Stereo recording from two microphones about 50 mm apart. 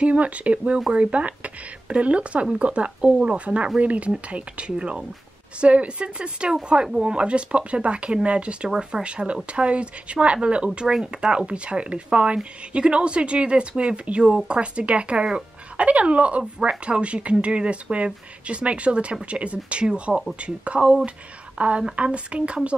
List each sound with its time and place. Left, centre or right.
0.0 s speech: right